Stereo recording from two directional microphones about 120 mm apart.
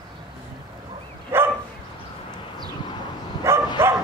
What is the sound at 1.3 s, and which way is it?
Dog, 20° right (ahead or behind).